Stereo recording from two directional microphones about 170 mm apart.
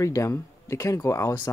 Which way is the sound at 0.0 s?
20° left (ahead or behind).